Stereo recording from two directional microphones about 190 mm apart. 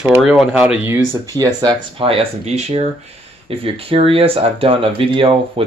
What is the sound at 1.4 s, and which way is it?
Speech, 20° right (ahead or behind).